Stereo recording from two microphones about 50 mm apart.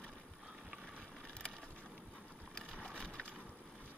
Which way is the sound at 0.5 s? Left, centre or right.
Centre.